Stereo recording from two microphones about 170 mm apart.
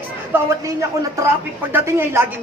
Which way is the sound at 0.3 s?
15° right (ahead or behind).